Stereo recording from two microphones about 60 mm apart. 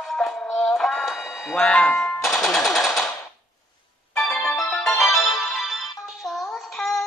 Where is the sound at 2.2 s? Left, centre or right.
Centre.